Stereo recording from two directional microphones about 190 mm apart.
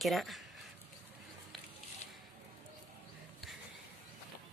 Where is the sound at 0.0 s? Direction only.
Centre (ahead or behind).